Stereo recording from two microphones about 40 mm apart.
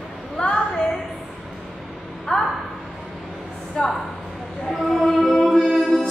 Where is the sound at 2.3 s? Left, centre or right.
Centre.